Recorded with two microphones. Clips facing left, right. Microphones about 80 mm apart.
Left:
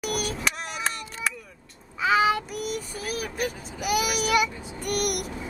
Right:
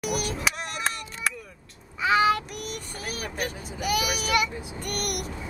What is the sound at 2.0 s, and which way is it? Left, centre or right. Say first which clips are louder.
Child singing: even; centre.